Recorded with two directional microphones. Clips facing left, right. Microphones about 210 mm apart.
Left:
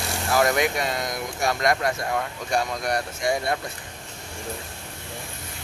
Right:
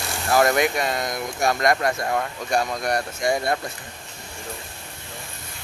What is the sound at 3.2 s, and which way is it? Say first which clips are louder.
Speech: right 2 dB; 45° right (ahead or behind).